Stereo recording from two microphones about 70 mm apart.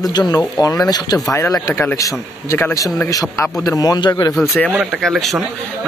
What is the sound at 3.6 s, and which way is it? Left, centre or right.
Speech, left.